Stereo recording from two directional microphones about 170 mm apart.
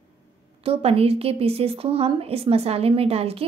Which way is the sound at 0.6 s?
35° right (ahead or behind).